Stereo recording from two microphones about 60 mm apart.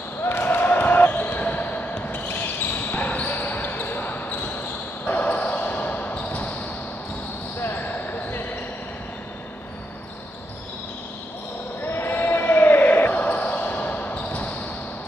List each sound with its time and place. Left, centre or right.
0.2 s basketball bounce: left
7.6 s basketball bounce: left
11.8 s basketball bounce: left